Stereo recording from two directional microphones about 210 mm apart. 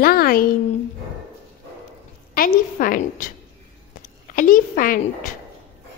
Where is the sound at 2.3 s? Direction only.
45° left (ahead or behind).